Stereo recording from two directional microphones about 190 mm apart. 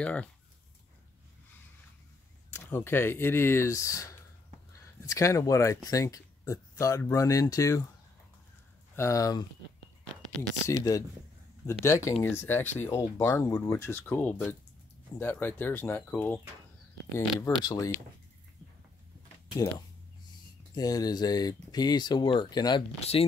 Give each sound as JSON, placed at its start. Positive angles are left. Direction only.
{"t": 0.0, "sound": "speech", "side_deg": 5}
{"t": 2.5, "sound": "speech", "side_deg": 10}
{"t": 8.9, "sound": "speech", "side_deg": 15}
{"t": 10.7, "sound": "speech", "side_deg": 20}
{"t": 17.4, "sound": "speech", "side_deg": 20}
{"t": 20.7, "sound": "speech", "side_deg": 20}
{"t": 22.9, "sound": "speech", "side_deg": 35}